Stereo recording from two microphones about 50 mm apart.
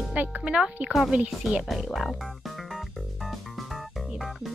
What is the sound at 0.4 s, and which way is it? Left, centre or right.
Speech, centre.